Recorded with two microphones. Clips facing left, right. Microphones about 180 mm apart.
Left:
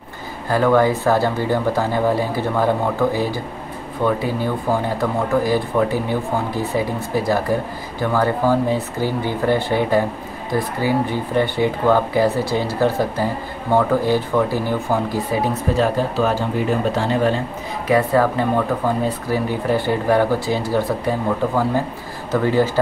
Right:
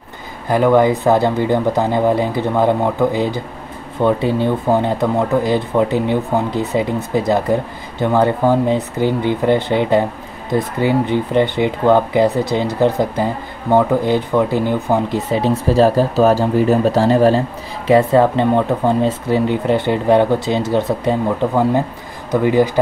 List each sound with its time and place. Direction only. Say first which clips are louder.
0.5 s speech: right 3 dB; 15° right (ahead or behind); by 17.4 s 35° right (ahead or behind)
17.8 s speech: right 5 dB; 25° right (ahead or behind)